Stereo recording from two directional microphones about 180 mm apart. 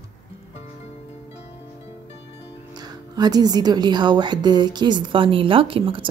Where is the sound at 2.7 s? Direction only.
25° right (ahead or behind).